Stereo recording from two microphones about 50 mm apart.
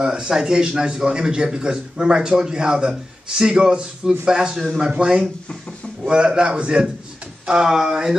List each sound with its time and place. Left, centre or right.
0.0 s a man's voice: centre